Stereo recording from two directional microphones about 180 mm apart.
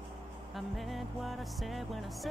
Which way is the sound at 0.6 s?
Centre (ahead or behind).